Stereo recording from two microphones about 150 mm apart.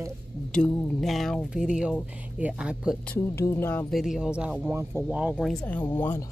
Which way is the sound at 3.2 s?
15° left (ahead or behind).